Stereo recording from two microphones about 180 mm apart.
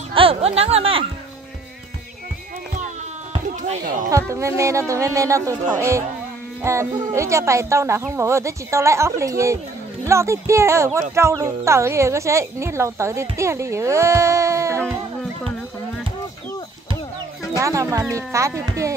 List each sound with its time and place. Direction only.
0.1 s speech: 30° right (ahead or behind)
3.4 s a sound: 45° right (ahead or behind)
4.3 s speech: 15° right (ahead or behind)
17.6 s speech: 15° right (ahead or behind)